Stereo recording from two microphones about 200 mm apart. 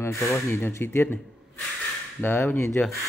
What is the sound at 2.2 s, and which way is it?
Speech, 10° left (ahead or behind).